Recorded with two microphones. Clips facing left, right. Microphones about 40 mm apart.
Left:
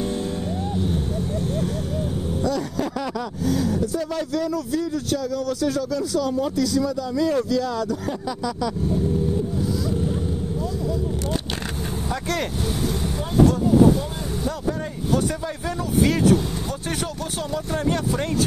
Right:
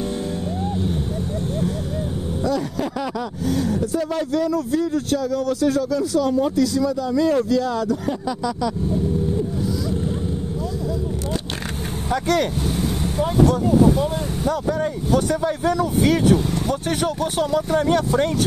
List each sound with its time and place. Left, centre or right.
2.4 s vehicle: centre
3.4 s speech: right
7.4 s speech: right
15.4 s speech: right